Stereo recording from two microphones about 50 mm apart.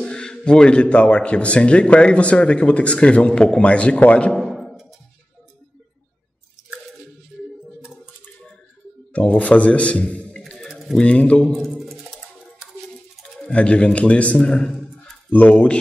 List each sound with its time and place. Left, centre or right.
0.0 s a man's voice: centre
4.4 s a sound: centre
7.8 s typing: centre
9.1 s a man's voice: left
10.7 s pigeon: centre
11.0 s a man's voice: left
11.7 s music: centre
13.5 s a man's voice: left